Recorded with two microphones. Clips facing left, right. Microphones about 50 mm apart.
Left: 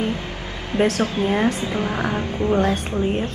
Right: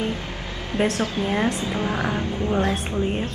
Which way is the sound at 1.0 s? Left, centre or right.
Left.